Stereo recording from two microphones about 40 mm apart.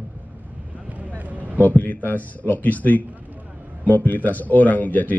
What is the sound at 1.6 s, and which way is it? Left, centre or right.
Speech, left.